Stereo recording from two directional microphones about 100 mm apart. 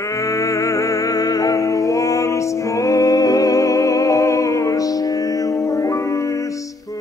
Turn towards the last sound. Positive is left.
turn(degrees=35)  # may be behind; listen again after turning